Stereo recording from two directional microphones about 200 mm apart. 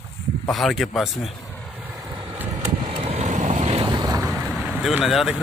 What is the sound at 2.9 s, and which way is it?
Boat, 30° right (ahead or behind).